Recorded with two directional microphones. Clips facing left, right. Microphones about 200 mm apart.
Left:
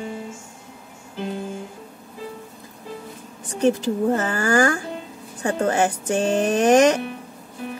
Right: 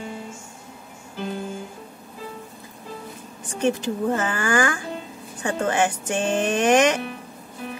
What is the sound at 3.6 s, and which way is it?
Speech, 35° left (ahead or behind).